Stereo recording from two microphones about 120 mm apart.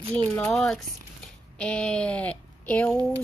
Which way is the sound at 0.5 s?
5° left (ahead or behind).